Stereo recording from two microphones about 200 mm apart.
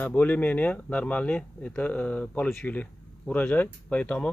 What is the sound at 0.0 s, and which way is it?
Speech, 10° left (ahead or behind).